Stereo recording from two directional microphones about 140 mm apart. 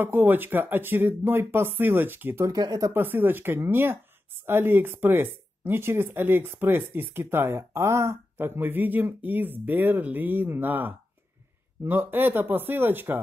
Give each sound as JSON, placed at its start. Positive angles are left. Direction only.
{"t": 0.0, "sound": "speech", "side_deg": -15}
{"t": 2.9, "sound": "speech", "side_deg": -15}